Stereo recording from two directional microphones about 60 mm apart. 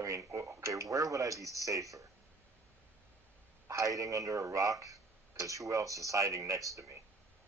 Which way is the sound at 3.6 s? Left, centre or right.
Right.